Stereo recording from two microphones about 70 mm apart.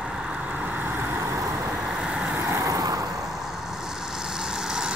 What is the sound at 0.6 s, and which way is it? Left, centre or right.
Vehicle, right.